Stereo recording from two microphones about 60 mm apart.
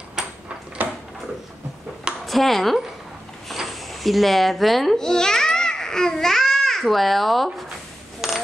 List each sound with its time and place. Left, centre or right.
0.8 s a sound: right
2.2 s a child's voice: centre
8.2 s coin: centre